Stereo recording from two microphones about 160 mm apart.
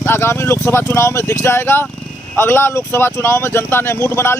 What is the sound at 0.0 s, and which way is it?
A man's voice, 15° left (ahead or behind).